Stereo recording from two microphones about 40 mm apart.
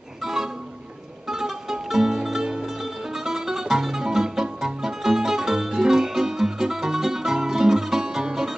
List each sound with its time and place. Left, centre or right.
0.2 s music: centre